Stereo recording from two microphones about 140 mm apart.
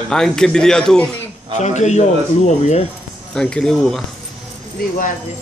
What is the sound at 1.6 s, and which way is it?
A man's voice, 55° left (ahead or behind).